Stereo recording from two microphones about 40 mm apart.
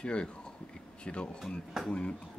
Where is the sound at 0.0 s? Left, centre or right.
Left.